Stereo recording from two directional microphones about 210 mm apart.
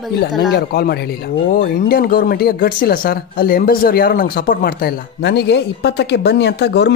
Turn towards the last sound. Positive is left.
turn(degrees=55)  # may be behind; listen again after turning